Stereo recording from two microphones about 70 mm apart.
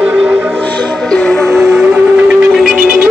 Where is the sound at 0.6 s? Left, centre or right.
Left.